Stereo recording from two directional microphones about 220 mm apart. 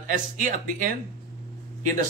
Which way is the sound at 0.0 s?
35° right (ahead or behind).